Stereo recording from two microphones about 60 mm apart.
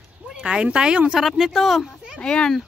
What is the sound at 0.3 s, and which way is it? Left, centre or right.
Speech, centre.